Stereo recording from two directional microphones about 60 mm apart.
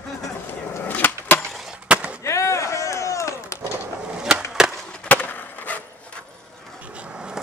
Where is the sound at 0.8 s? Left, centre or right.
Left.